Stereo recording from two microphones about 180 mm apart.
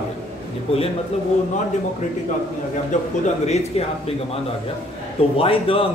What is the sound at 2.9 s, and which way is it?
Speech, 45° left (ahead or behind).